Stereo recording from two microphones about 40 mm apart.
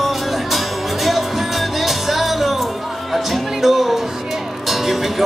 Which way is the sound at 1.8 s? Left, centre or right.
Centre.